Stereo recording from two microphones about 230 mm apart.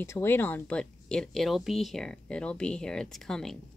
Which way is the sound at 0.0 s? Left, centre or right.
Centre.